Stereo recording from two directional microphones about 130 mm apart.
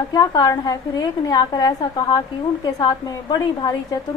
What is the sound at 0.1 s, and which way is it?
A woman's voice, 30° left (ahead or behind).